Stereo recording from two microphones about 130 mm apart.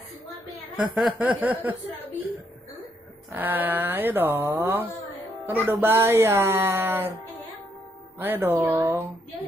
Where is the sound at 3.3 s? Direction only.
15° right (ahead or behind).